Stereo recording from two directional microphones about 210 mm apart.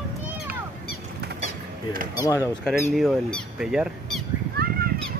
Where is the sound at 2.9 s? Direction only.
Centre (ahead or behind).